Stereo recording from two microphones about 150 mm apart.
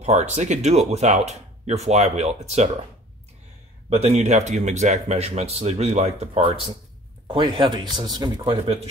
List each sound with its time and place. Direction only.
0.0 s speech: 50° right (ahead or behind)
3.9 s speech: 45° right (ahead or behind)